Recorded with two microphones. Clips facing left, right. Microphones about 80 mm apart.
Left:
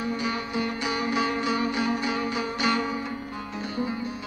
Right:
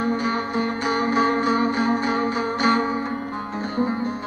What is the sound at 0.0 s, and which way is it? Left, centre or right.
Music, right.